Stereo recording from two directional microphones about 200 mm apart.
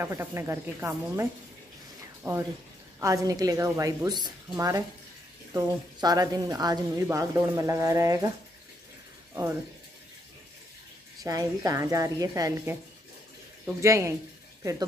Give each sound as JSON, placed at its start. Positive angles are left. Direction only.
{"t": 0.0, "sound": "a woman's voice", "side_deg": -15}
{"t": 2.2, "sound": "a woman's voice", "side_deg": -15}
{"t": 9.3, "sound": "speech", "side_deg": -10}
{"t": 11.2, "sound": "a woman's voice", "side_deg": -15}
{"t": 13.7, "sound": "a woman's voice", "side_deg": -15}